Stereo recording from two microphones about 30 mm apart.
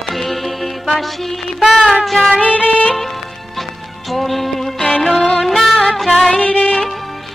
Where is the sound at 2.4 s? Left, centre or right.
Left.